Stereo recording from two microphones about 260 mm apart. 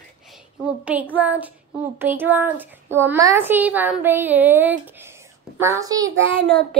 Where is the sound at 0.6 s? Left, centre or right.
Centre.